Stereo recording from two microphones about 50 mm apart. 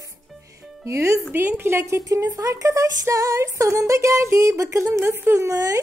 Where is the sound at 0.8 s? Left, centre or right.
Right.